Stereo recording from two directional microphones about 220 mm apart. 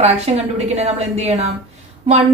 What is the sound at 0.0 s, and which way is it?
A woman's voice, 30° right (ahead or behind).